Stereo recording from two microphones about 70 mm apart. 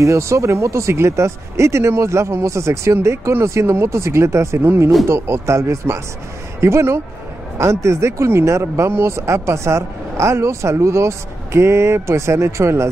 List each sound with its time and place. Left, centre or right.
0.0 s speech: right